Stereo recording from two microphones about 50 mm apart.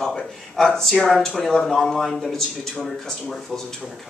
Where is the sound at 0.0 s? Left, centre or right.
Centre.